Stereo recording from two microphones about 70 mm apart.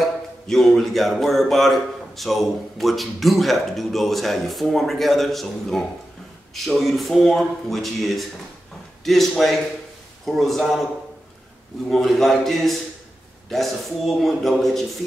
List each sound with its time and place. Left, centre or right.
0.0 s music: centre
11.9 s music: centre